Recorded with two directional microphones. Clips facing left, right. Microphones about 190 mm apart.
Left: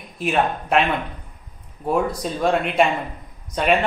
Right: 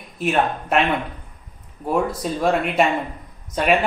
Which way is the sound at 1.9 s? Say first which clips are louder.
Even; 5° right (ahead or behind).